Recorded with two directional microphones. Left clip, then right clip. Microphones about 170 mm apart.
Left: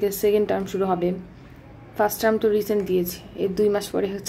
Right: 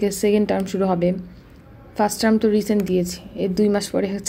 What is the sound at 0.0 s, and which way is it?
A woman's voice, 35° right (ahead or behind).